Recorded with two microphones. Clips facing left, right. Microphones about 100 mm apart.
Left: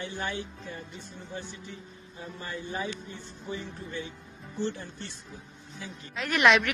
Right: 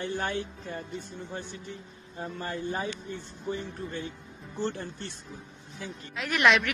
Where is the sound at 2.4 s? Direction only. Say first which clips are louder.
Right 2 dB; 45° right (ahead or behind).